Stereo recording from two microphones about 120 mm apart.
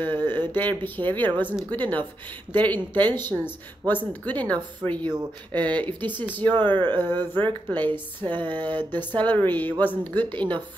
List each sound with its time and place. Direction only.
0.0 s a sound: 15° left (ahead or behind)
0.5 s speech: 15° left (ahead or behind)
6.5 s speech: 40° right (ahead or behind)
7.7 s speech: 15° left (ahead or behind)